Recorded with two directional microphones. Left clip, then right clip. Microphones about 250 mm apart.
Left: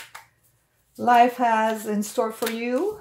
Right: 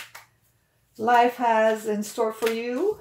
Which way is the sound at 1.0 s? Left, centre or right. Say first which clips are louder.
Left 2 dB; left.